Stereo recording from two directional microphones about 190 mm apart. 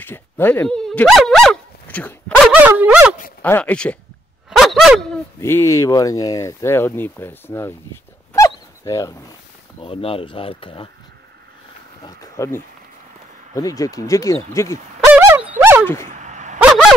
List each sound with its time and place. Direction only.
0.0 s speech: 10° left (ahead or behind)
2.5 s speech: 10° right (ahead or behind)
3.4 s speech: 10° left (ahead or behind)
4.5 s dog: centre (ahead or behind)
5.4 s speech: 15° left (ahead or behind)
8.3 s dog: 15° left (ahead or behind)
9.8 s speech: 30° left (ahead or behind)
12.0 s speech: 20° left (ahead or behind)
15.1 s dog: 10° right (ahead or behind)
16.1 s dog: 40° right (ahead or behind)